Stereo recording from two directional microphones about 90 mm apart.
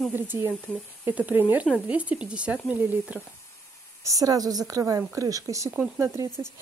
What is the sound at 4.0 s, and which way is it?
Speech, 40° right (ahead or behind).